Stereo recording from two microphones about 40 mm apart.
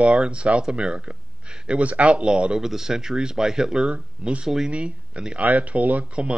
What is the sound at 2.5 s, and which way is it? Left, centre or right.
Speech, centre.